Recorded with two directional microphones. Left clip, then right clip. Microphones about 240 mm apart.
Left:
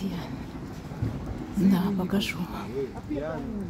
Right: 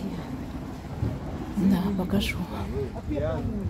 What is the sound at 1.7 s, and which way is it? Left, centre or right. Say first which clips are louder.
Speech: even; centre.